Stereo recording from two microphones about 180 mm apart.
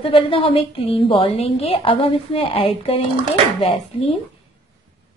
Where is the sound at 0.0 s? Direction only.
30° left (ahead or behind).